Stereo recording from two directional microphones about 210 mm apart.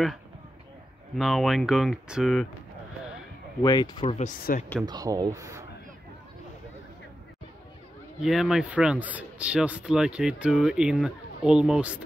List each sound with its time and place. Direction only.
1.1 s speech: centre (ahead or behind)
3.6 s speech: 20° left (ahead or behind)
4.5 s speech: 40° left (ahead or behind)
4.8 s speech: 20° right (ahead or behind)
8.2 s speech: centre (ahead or behind)